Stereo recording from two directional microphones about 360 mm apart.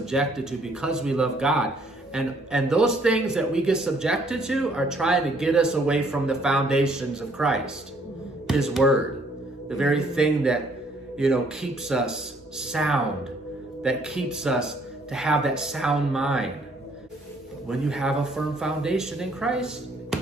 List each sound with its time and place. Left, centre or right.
0.0 s speech: centre
17.6 s speech: centre